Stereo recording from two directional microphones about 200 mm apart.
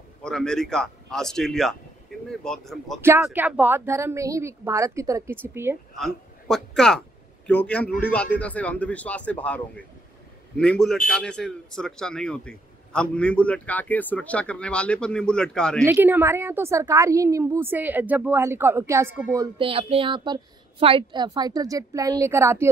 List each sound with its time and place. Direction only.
0.2 s a man's voice: 5° left (ahead or behind)
3.0 s a woman's voice: 15° right (ahead or behind)
5.9 s a woman's voice: centre (ahead or behind)
15.8 s a woman's voice: 10° right (ahead or behind)
19.6 s a woman's voice: 30° right (ahead or behind); by 22.7 s 15° right (ahead or behind)